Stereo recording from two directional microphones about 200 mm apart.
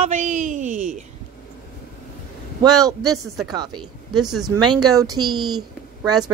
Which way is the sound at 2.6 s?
15° right (ahead or behind).